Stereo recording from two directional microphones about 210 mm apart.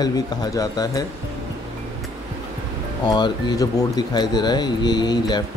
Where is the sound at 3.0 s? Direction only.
20° left (ahead or behind).